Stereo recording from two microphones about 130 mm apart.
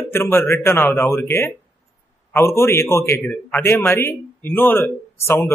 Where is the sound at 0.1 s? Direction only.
15° left (ahead or behind).